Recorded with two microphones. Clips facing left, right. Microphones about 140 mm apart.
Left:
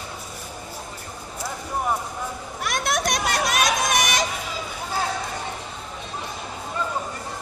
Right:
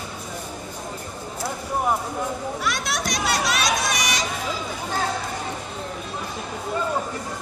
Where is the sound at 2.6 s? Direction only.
50° left (ahead or behind).